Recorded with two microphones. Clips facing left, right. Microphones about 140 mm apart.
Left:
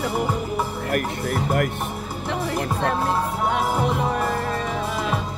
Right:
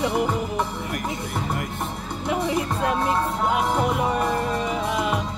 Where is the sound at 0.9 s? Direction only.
60° left (ahead or behind).